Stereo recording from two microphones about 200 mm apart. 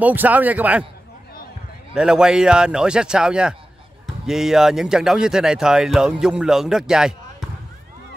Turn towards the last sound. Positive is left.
turn(degrees=-5)  # may be behind; listen again after turning